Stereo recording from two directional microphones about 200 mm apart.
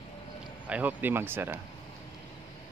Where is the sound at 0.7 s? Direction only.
10° right (ahead or behind).